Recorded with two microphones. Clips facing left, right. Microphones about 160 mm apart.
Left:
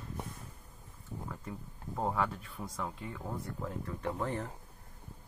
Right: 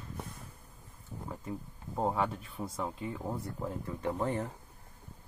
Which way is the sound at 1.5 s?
20° right (ahead or behind).